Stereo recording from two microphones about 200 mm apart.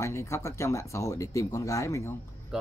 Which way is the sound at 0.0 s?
15° left (ahead or behind).